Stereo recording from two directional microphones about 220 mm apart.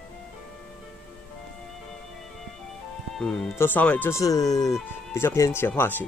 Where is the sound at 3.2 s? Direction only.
5° left (ahead or behind).